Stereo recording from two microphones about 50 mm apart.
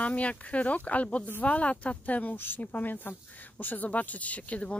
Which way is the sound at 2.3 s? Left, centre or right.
Left.